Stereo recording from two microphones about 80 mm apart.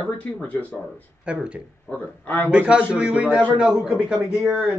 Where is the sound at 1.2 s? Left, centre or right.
Centre.